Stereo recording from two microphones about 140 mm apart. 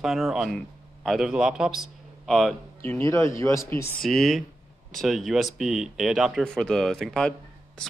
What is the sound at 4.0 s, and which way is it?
Speech, centre (ahead or behind).